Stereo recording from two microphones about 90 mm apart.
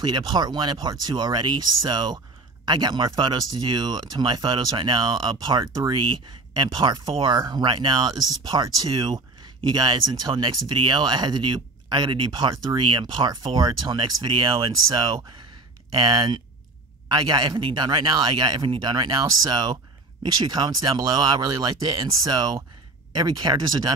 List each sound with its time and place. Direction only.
0.0 s speech: 55° right (ahead or behind)
20.4 s speech: 55° right (ahead or behind)